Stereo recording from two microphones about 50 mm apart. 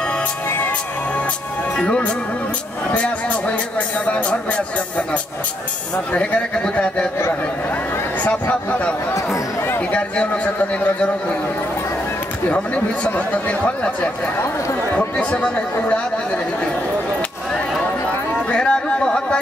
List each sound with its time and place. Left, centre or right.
0.5 s music: left
1.8 s a man's voice: left
8.2 s a man's voice: left
12.4 s a man's voice: left
18.5 s a sound: centre